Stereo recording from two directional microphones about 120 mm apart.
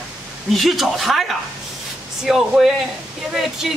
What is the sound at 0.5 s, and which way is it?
Speech, centre (ahead or behind).